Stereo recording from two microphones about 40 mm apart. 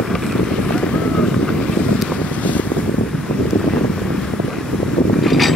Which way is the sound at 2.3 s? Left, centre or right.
Left.